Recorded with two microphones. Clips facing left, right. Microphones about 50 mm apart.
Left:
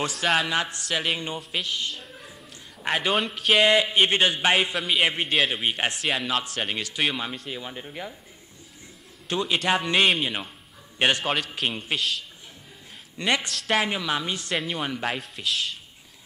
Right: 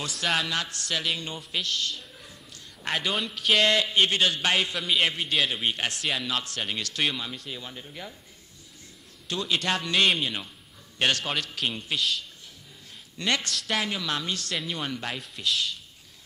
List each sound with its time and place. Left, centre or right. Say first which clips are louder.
0.1 s speech: even; centre
0.5 s speech: left 4 dB; left
2.0 s a sound: left 3 dB; centre
2.8 s a man's voice: left 4 dB; centre
7.5 s speech: left 4 dB; left
9.3 s a man's voice: left 4 dB; left
13.2 s speech: left 2 dB; centre
13.8 s speech: left 3 dB; centre
15.1 s speech: left 1 dB; centre